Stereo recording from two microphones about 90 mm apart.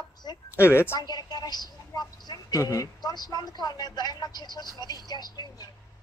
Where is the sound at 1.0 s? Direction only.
50° left (ahead or behind).